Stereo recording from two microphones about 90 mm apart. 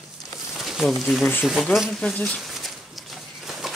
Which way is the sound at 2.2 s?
15° left (ahead or behind).